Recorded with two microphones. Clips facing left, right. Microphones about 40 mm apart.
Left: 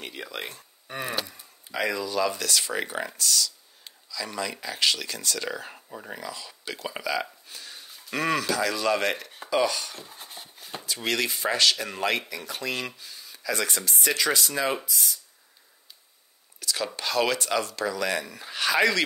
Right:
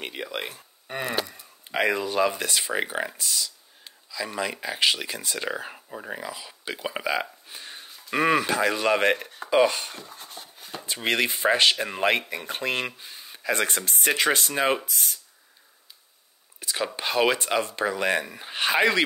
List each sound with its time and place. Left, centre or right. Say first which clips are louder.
0.0 s speech: right 3 dB; right
0.8 s a sound: right 3 dB; right
1.7 s speech: right 4 dB; right
10.1 s a sound: right 1 dB; centre
11.0 s speech: right 3 dB; right
16.5 s speech: right 1 dB; right